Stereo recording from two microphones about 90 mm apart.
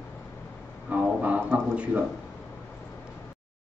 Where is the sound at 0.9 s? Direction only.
15° right (ahead or behind).